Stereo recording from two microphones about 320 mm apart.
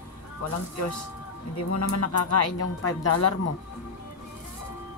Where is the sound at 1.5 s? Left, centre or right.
Left.